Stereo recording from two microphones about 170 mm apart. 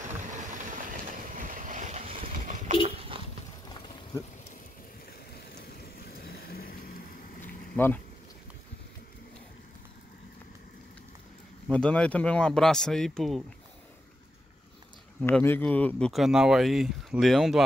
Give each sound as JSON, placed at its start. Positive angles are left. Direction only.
{"t": 1.3, "sound": "a sound", "side_deg": -50}
{"t": 3.6, "sound": "clip-clop", "side_deg": 25}
{"t": 5.3, "sound": "vehicle", "side_deg": 65}
{"t": 7.4, "sound": "a sound", "side_deg": 10}
{"t": 11.7, "sound": "speech", "side_deg": 5}
{"t": 15.2, "sound": "speech", "side_deg": 15}